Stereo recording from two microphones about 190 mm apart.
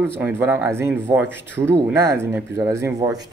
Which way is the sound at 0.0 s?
10° right (ahead or behind).